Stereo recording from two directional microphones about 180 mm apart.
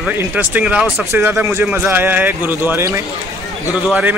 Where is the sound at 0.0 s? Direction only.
10° right (ahead or behind).